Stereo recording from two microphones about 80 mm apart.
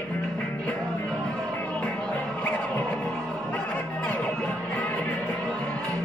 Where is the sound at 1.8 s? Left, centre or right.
Centre.